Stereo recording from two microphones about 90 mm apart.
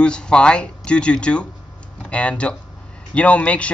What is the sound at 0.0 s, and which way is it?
Speech, 10° left (ahead or behind).